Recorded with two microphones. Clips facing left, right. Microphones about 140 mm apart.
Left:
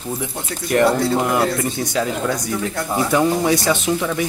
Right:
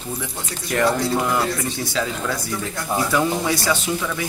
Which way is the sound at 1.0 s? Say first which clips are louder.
Left 3 dB; 25° left (ahead or behind).